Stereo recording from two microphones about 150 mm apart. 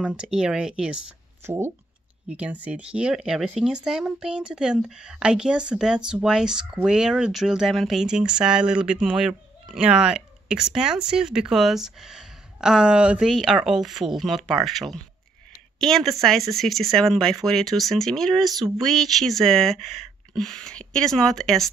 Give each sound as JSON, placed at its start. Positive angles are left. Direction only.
{"t": 0.0, "sound": "speech", "side_deg": -5}
{"t": 1.4, "sound": "speech", "side_deg": -15}